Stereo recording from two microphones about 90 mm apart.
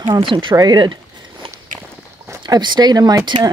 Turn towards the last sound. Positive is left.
turn(degrees=-55)  # may be behind; listen again after turning